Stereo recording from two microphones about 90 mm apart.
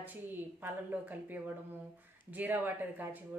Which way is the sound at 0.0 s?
20° right (ahead or behind).